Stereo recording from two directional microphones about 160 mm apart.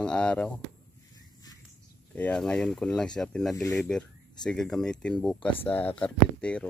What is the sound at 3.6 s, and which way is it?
Speech, 20° left (ahead or behind).